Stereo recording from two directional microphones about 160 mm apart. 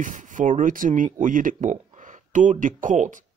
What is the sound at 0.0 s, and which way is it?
Speech, 50° right (ahead or behind).